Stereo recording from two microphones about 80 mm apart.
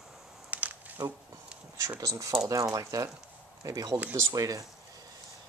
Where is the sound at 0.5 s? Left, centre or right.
Centre.